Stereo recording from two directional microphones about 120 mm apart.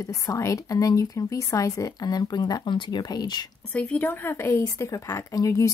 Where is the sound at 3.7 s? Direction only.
10° left (ahead or behind).